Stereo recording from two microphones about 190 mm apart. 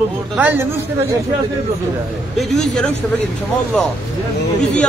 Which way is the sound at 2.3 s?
Centre (ahead or behind).